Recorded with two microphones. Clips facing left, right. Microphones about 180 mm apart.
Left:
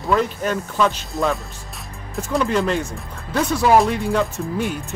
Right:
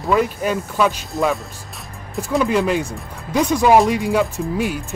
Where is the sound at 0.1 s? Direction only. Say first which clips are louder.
Right 2 dB; 10° right (ahead or behind).